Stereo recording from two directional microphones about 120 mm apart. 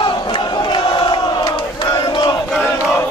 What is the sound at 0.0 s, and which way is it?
Crowd, 40° left (ahead or behind).